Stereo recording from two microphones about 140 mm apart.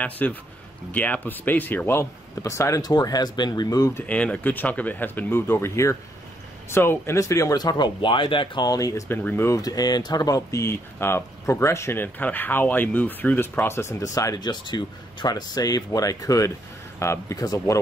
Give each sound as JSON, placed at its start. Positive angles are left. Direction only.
{"t": 0.0, "sound": "speech", "side_deg": 10}
{"t": 4.0, "sound": "speech", "side_deg": 10}